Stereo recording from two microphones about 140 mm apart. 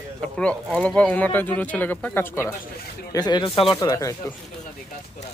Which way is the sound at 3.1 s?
30° left (ahead or behind).